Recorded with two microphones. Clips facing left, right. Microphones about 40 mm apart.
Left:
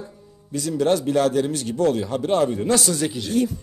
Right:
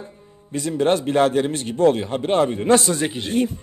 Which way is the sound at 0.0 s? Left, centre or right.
Right.